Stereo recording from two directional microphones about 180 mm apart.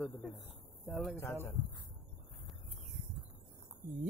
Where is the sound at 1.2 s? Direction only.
15° left (ahead or behind).